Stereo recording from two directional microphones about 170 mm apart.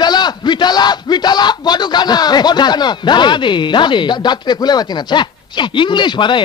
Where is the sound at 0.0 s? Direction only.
25° left (ahead or behind).